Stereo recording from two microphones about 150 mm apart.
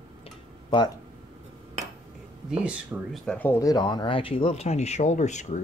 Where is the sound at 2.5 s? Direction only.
5° right (ahead or behind).